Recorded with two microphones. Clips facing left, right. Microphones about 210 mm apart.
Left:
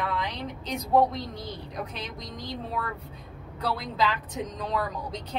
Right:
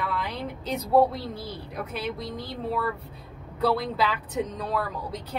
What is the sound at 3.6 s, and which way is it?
A woman's voice, 10° right (ahead or behind).